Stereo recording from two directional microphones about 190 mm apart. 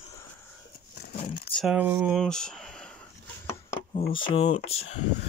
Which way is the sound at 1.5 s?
5° right (ahead or behind).